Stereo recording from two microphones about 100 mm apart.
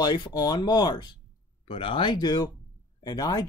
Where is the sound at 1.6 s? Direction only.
60° left (ahead or behind); by 3.5 s 40° left (ahead or behind).